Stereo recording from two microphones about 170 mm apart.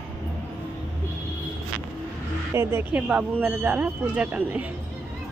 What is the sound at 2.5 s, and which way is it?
Speech, 15° right (ahead or behind).